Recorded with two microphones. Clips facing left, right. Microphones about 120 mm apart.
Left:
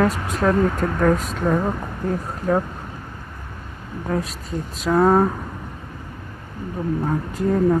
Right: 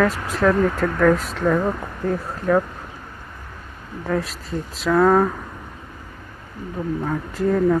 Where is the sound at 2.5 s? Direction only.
30° left (ahead or behind).